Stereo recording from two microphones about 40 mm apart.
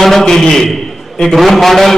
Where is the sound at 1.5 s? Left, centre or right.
Centre.